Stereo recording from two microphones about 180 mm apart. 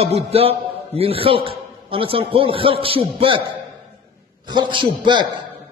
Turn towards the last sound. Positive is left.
turn(degrees=-25)  # may be behind; listen again after turning